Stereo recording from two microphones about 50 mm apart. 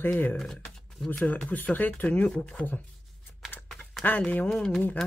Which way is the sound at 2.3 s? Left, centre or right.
Centre.